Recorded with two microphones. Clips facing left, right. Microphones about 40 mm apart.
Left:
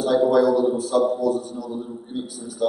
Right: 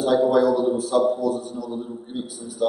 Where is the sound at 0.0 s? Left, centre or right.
Centre.